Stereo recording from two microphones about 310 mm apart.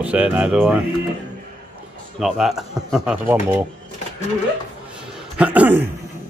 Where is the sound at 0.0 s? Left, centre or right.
Centre.